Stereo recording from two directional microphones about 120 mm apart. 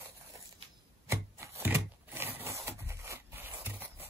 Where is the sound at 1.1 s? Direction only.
20° right (ahead or behind).